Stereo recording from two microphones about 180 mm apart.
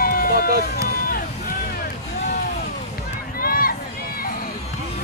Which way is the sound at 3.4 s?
55° left (ahead or behind).